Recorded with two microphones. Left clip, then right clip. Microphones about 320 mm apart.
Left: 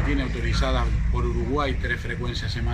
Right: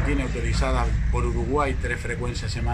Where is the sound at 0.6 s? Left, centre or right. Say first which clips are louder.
Right 1 dB; centre.